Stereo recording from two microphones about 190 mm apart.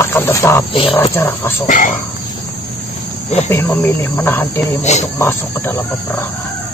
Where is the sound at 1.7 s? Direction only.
40° left (ahead or behind).